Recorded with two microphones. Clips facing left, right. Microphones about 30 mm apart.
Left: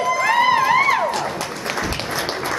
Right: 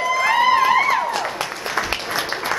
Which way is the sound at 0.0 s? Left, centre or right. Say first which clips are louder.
Even; centre.